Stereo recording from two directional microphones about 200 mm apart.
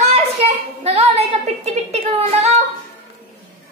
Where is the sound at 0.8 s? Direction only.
30° right (ahead or behind).